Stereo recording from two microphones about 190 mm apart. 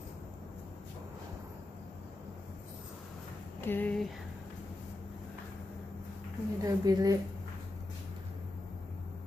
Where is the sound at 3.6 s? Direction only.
10° left (ahead or behind).